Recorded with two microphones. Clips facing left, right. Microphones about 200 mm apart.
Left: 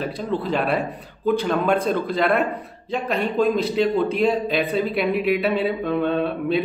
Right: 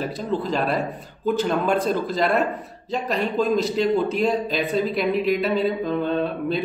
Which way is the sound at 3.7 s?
Centre (ahead or behind).